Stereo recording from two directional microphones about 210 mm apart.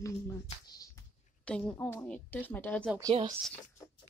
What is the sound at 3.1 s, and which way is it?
Speech, 25° right (ahead or behind).